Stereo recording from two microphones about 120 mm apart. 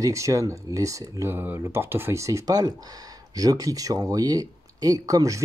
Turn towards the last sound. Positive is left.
turn(degrees=-30)  # may be behind; listen again after turning